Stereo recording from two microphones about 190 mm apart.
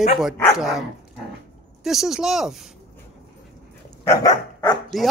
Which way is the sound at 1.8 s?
Centre (ahead or behind).